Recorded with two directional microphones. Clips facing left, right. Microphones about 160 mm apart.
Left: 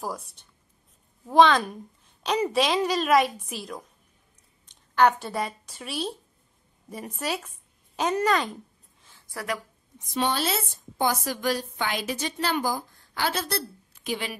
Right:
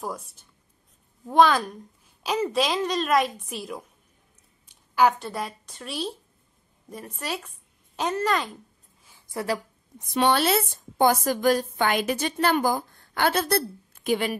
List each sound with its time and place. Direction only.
0.0 s a woman's voice: centre (ahead or behind)
9.3 s a woman's voice: 25° right (ahead or behind)
10.1 s a woman's voice: 65° right (ahead or behind)